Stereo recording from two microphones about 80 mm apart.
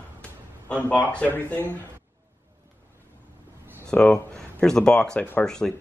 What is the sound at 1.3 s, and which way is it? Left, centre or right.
Speech, left.